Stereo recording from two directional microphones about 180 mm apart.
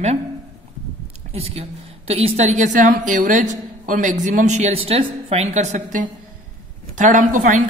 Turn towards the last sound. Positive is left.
turn(degrees=-45)  # may be behind; listen again after turning